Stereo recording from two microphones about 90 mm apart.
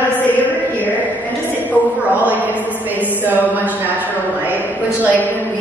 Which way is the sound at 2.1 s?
20° right (ahead or behind).